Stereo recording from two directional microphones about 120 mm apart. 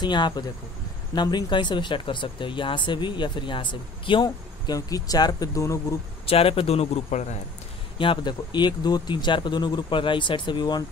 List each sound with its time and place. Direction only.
0.0 s speech: 40° left (ahead or behind)
6.2 s a man's voice: 50° left (ahead or behind); by 7.3 s 70° left (ahead or behind)
8.0 s speech: 40° left (ahead or behind)